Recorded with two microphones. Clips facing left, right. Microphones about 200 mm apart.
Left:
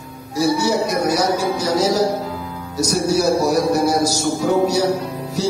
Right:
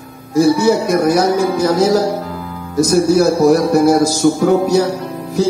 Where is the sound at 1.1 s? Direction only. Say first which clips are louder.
Right 5 dB; 50° right (ahead or behind).